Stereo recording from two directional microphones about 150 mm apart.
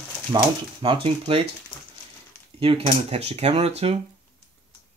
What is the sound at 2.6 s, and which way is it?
Speech, 40° right (ahead or behind).